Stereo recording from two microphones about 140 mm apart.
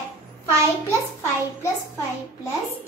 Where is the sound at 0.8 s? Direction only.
20° left (ahead or behind).